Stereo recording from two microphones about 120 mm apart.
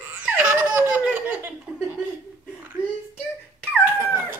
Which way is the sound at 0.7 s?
15° right (ahead or behind).